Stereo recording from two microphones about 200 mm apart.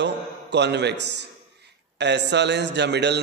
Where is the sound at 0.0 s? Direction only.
60° right (ahead or behind).